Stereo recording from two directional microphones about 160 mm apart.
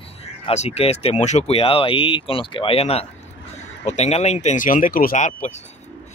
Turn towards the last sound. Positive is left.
turn(degrees=50)  # may be behind; listen again after turning